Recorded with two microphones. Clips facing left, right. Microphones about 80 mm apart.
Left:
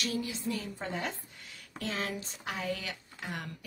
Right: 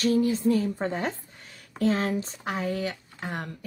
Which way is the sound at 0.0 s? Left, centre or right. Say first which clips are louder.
Right 12 dB; right.